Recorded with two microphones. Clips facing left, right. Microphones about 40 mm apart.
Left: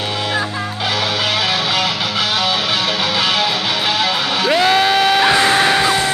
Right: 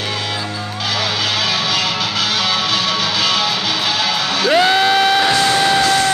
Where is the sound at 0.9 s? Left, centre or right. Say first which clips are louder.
Even; left.